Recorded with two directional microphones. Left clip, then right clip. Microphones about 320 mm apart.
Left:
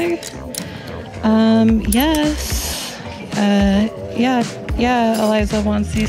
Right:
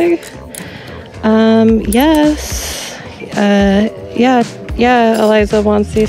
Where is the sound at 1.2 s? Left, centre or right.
Right.